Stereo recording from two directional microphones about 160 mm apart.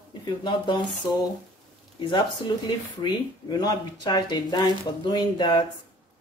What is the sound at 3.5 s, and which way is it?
Speech, 25° left (ahead or behind).